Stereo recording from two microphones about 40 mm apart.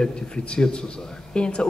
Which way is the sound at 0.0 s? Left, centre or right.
Left.